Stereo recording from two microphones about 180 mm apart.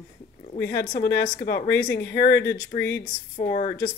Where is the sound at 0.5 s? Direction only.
60° left (ahead or behind).